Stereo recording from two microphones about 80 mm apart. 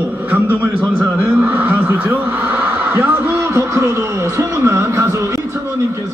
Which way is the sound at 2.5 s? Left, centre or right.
Right.